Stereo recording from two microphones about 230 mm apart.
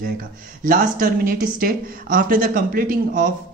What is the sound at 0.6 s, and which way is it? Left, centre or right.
A woman's voice, right.